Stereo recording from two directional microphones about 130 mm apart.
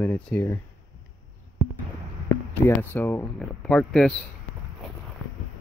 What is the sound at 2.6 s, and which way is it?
Speech, 20° left (ahead or behind).